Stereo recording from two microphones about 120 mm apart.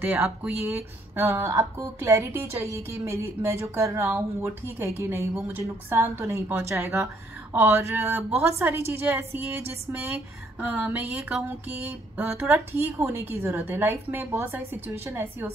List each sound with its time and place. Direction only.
0.0 s a woman's voice: 10° right (ahead or behind)